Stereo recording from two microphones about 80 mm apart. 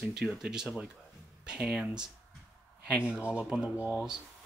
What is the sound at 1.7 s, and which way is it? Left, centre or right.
Speech, centre.